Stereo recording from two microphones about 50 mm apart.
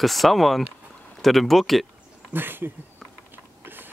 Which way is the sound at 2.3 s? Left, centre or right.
Right.